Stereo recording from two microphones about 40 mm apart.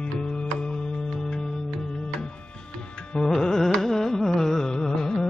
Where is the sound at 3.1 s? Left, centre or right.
Centre.